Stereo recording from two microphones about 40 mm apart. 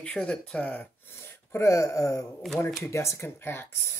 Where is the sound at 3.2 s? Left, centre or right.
Left.